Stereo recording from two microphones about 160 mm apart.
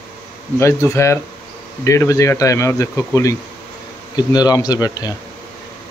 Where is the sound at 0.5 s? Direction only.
15° left (ahead or behind).